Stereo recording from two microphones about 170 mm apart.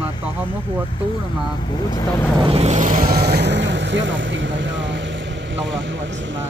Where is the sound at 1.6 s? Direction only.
25° left (ahead or behind).